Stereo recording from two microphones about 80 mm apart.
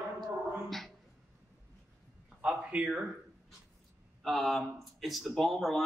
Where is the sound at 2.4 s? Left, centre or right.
Centre.